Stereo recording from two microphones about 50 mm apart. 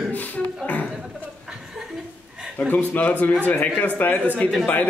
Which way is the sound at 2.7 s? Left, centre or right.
Left.